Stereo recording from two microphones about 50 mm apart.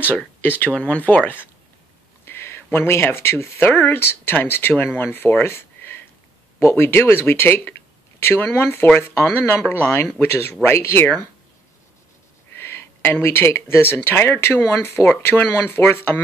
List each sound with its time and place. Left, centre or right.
0.0 s speech: left
2.2 s speech: left
5.4 s a sound: left
6.6 s speech: left
10.2 s speech: left
12.5 s speech: left
15.8 s speech: left